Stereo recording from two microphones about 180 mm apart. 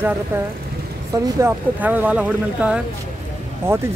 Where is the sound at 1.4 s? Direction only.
10° right (ahead or behind).